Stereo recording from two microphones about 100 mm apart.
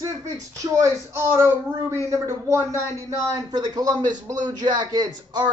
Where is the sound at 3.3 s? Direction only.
40° right (ahead or behind).